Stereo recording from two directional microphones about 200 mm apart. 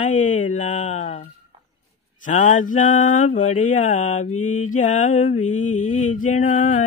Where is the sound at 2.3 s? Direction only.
40° left (ahead or behind).